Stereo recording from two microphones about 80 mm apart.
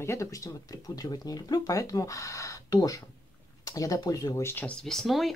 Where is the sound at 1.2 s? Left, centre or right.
Left.